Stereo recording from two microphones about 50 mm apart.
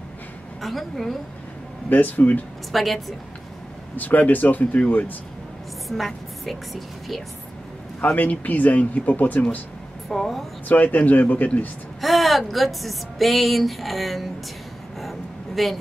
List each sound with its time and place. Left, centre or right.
0.6 s a woman's voice: centre
1.9 s speech: left
2.7 s a woman's voice: centre
3.9 s speech: left
5.9 s a woman's voice: centre
8.0 s speech: left
10.0 s a woman's voice: centre
10.7 s speech: left
12.0 s a woman's voice: centre
15.0 s a sound: centre